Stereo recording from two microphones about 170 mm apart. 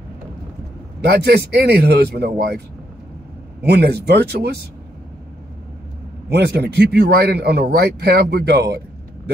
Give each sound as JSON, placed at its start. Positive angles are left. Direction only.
{"t": 1.0, "sound": "a man's voice", "side_deg": -70}
{"t": 3.6, "sound": "a man's voice", "side_deg": -70}
{"t": 6.3, "sound": "a man's voice", "side_deg": -70}